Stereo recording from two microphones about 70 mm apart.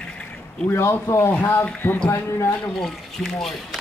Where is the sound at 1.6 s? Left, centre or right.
Left.